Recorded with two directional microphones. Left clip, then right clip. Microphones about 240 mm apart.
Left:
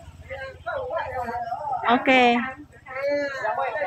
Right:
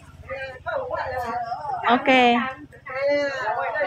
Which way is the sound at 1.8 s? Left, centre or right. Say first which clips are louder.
Right 1 dB; centre.